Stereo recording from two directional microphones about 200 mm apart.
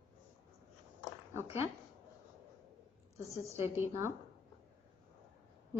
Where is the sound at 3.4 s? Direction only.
15° right (ahead or behind).